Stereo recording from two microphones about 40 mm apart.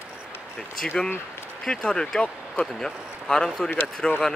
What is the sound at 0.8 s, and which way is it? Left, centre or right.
Speech, left.